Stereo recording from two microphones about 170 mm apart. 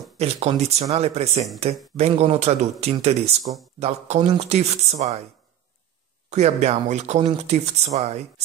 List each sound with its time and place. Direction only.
0.2 s speech: 40° right (ahead or behind)
6.3 s speech: 40° right (ahead or behind)